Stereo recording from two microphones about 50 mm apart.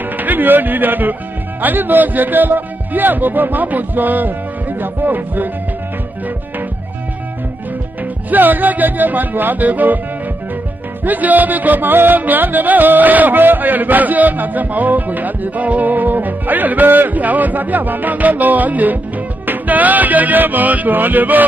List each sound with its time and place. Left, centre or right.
0.2 s music: right
8.3 s music: right
11.1 s music: right